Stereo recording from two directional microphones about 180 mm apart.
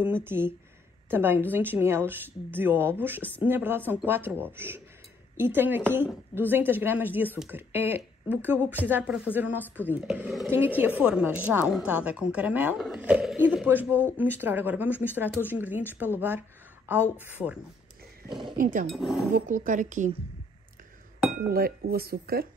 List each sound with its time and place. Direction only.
0.0 s speech: 10° right (ahead or behind)
18.6 s a woman's voice: 50° right (ahead or behind)
18.9 s speech: centre (ahead or behind)
19.3 s a woman's voice: 45° right (ahead or behind)
21.5 s speech: 60° right (ahead or behind)